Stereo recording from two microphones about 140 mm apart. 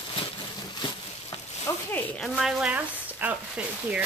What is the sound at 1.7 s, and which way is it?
Speech, 25° left (ahead or behind).